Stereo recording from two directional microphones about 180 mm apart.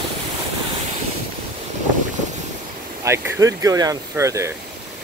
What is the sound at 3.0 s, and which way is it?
Speech, 20° right (ahead or behind).